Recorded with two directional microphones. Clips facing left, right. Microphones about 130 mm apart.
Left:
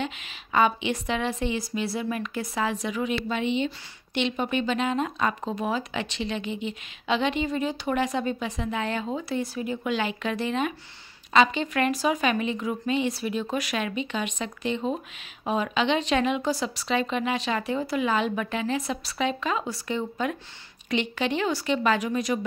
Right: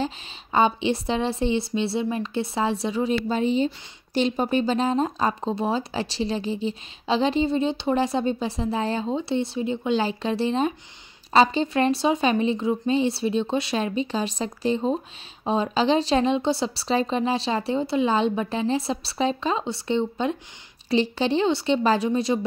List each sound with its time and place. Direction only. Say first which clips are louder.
0.0 s a woman's voice: right 4 dB; 30° right (ahead or behind)